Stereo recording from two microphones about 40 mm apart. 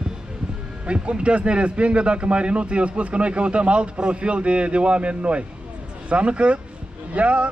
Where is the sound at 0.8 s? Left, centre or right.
Right.